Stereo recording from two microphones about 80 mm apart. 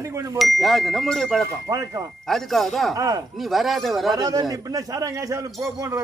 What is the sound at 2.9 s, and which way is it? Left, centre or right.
Speech, right.